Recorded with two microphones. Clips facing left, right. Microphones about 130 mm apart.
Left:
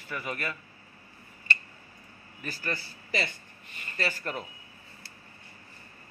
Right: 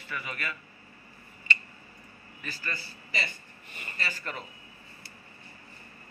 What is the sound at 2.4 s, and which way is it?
Speech, 50° left (ahead or behind).